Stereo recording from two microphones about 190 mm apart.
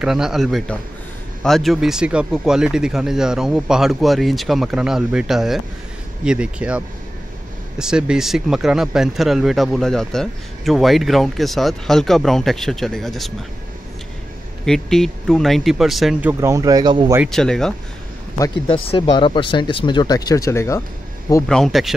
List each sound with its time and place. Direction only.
0.0 s speech: 5° right (ahead or behind)
7.8 s speech: 5° right (ahead or behind)
14.7 s speech: centre (ahead or behind); by 17.1 s 25° right (ahead or behind)
17.3 s speech: 5° left (ahead or behind)
18.9 s speech: 25° left (ahead or behind)
21.5 s speech: centre (ahead or behind)